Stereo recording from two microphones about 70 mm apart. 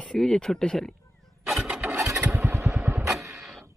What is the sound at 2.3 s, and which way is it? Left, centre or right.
Vehicle, right.